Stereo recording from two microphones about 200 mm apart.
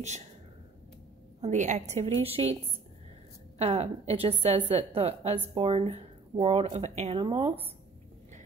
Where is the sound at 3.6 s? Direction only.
30° right (ahead or behind).